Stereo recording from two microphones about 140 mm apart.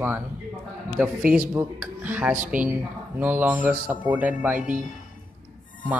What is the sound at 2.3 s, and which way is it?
Speech, 70° right (ahead or behind).